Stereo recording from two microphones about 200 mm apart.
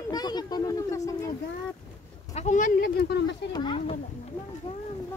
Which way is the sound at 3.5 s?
25° left (ahead or behind).